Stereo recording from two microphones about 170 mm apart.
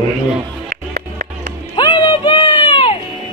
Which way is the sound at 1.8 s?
30° left (ahead or behind).